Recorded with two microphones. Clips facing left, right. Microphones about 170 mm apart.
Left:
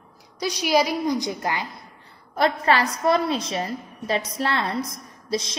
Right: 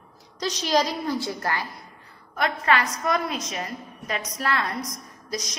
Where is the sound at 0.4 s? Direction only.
10° left (ahead or behind).